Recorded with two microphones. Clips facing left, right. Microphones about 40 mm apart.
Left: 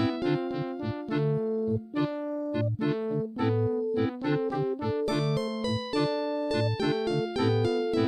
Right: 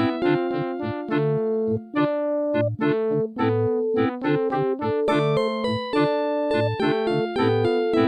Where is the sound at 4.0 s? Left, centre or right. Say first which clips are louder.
Right 6 dB; right.